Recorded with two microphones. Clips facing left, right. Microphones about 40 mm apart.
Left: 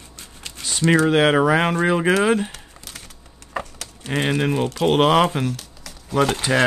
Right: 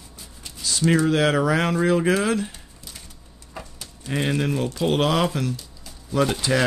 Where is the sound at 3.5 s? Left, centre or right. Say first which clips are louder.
Left 9 dB; left.